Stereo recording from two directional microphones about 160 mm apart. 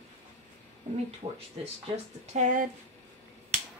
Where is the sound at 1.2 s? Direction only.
40° right (ahead or behind).